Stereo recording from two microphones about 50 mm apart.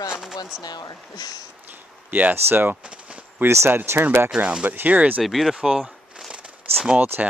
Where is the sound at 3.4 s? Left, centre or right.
Right.